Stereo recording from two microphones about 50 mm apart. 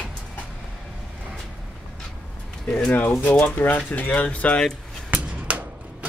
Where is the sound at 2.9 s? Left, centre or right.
Left.